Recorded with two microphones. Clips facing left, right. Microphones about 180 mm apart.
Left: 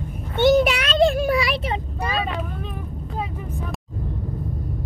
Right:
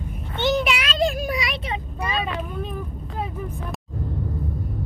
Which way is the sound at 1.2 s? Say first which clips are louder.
Left 6 dB; 30° left (ahead or behind).